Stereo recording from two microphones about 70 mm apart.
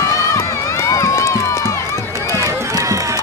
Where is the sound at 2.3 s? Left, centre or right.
Right.